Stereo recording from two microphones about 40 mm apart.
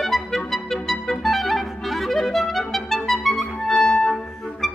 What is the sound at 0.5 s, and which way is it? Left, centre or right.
Clarinet, centre.